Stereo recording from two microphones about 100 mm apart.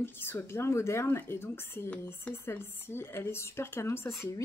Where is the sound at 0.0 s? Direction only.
25° left (ahead or behind).